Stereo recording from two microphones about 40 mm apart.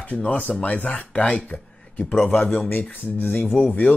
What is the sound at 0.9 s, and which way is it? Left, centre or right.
Speech, left.